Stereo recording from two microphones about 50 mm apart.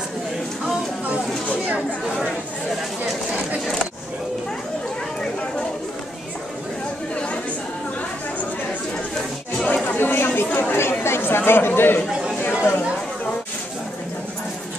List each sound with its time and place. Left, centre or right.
9.8 s chatter: left